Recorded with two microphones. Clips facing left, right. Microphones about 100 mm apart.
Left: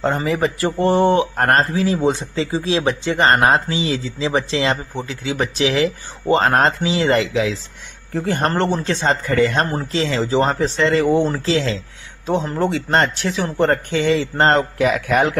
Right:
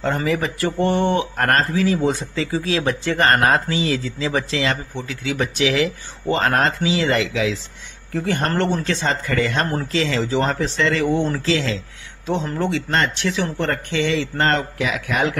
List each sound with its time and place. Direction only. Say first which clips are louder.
0.0 s speech: left 2 dB; 35° left (ahead or behind)
2.0 s speech: left 2 dB; 25° left (ahead or behind)
9.7 s speech: even; 20° left (ahead or behind)
9.9 s speech: left 3 dB; 35° left (ahead or behind)
14.9 s a man's voice: left 5 dB; 50° left (ahead or behind)